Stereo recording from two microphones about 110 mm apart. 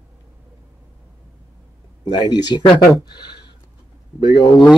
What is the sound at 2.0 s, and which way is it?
Speech, 40° left (ahead or behind).